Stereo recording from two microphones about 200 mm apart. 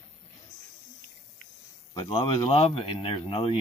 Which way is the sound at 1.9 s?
25° left (ahead or behind).